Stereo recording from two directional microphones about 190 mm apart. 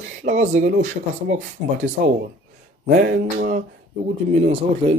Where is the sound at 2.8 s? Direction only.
50° right (ahead or behind).